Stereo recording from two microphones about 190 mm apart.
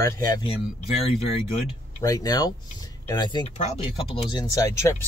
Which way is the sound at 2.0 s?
20° left (ahead or behind).